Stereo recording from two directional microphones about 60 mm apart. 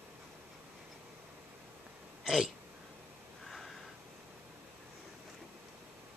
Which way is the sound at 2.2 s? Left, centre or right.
Centre.